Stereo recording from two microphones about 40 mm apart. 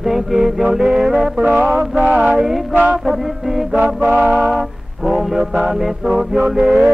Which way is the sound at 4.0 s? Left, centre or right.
Right.